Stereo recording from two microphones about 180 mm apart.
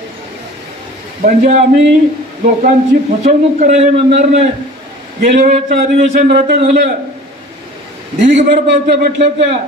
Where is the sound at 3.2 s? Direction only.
40° right (ahead or behind).